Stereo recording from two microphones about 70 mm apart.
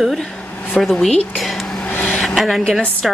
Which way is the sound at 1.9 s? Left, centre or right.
Left.